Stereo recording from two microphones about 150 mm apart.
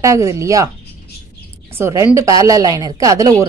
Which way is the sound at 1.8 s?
20° right (ahead or behind).